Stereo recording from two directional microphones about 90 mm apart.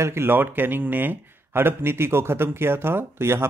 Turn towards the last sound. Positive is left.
turn(degrees=-25)  # may be behind; listen again after turning